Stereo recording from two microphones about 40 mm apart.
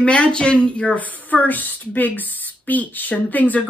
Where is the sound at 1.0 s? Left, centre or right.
Left.